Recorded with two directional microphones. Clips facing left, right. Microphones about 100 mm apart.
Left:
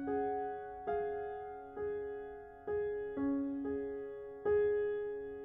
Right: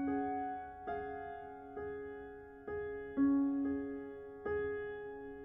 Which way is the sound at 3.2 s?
25° right (ahead or behind).